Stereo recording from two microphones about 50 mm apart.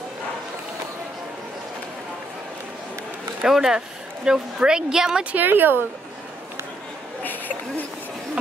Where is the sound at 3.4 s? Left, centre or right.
Centre.